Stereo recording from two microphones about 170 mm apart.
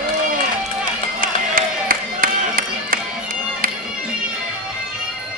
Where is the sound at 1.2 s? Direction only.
55° right (ahead or behind).